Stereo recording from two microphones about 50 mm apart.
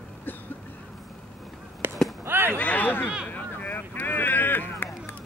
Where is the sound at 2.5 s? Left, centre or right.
Left.